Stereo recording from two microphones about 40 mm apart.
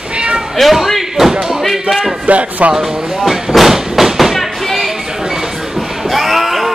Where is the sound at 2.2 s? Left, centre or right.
Right.